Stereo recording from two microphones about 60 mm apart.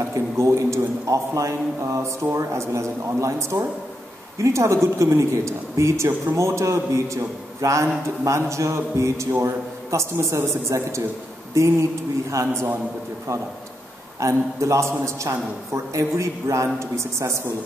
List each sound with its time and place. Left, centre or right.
0.1 s a man's voice: right
14.2 s a man's voice: right